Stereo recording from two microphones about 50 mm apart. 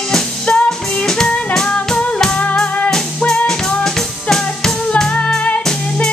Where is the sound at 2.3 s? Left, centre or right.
Left.